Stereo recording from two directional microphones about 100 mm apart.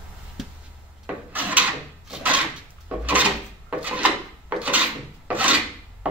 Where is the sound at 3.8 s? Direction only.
15° right (ahead or behind).